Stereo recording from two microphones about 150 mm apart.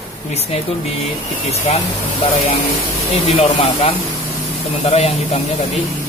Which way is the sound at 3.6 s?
40° left (ahead or behind).